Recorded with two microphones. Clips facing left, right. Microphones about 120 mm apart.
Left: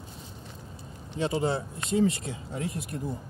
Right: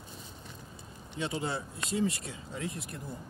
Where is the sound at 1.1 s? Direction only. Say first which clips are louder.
Left 7 dB; 35° left (ahead or behind).